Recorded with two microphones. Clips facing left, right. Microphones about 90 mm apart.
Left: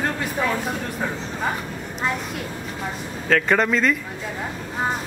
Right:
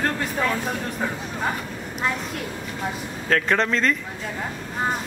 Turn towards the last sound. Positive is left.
turn(degrees=5)  # may be behind; listen again after turning